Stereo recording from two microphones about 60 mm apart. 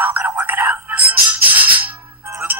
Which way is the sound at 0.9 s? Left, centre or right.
Right.